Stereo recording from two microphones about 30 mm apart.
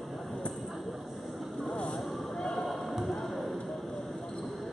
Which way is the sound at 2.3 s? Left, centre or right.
Left.